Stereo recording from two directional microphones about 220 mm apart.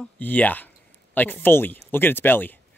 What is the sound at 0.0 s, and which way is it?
Speech, 5° left (ahead or behind).